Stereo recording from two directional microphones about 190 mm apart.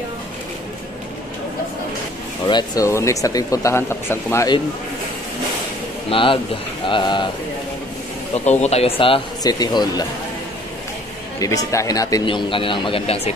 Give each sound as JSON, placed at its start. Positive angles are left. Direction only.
{"t": 2.4, "sound": "speech", "side_deg": 20}
{"t": 6.0, "sound": "a man's voice", "side_deg": 25}
{"t": 8.5, "sound": "a man's voice", "side_deg": 35}
{"t": 11.3, "sound": "a man's voice", "side_deg": 20}